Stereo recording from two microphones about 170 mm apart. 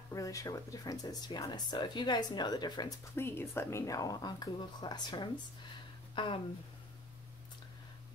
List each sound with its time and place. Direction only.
0.1 s speech: 20° left (ahead or behind)
3.2 s speech: 15° left (ahead or behind); by 6.4 s 30° left (ahead or behind)